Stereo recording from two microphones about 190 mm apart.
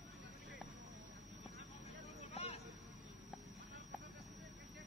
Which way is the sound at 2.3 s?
30° left (ahead or behind).